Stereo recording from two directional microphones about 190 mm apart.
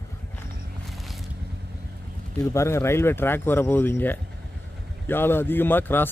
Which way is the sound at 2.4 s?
15° left (ahead or behind).